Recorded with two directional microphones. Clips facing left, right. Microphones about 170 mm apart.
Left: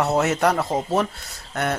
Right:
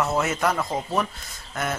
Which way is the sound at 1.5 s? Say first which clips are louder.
Left 4 dB; 65° left (ahead or behind).